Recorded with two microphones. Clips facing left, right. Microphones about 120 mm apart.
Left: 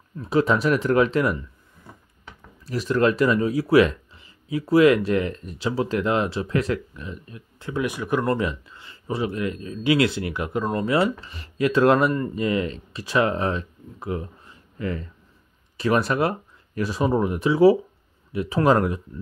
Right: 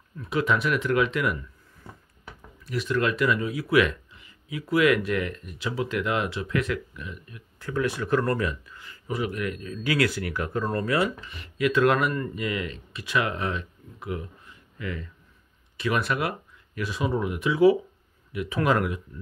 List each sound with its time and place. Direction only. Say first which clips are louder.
0.2 s speech: left 5 dB; 35° left (ahead or behind)
2.6 s speech: left 5 dB; 35° left (ahead or behind)